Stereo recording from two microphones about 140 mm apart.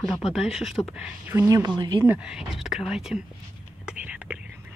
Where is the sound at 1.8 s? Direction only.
35° right (ahead or behind).